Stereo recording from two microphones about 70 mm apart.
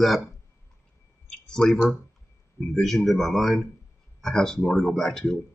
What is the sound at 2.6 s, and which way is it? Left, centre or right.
Speech, centre.